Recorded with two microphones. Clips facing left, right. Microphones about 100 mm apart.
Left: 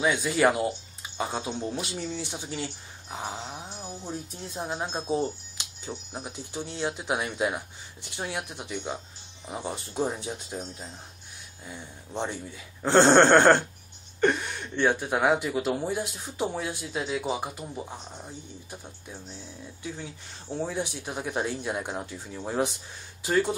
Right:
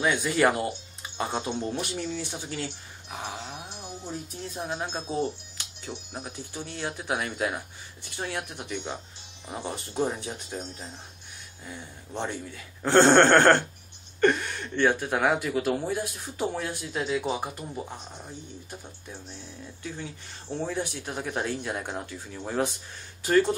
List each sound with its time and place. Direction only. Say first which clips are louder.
0.0 s speech: even; 10° left (ahead or behind)
3.3 s speech: left 1 dB; 25° left (ahead or behind); by 10.9 s 5° left (ahead or behind)
12.1 s speech: even; 10° left (ahead or behind)
19.8 s speech: even; 10° left (ahead or behind)